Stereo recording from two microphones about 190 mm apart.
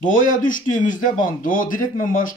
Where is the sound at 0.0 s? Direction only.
45° left (ahead or behind).